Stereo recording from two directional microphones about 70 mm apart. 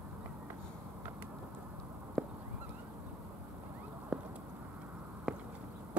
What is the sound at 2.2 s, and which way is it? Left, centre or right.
Fowl, centre.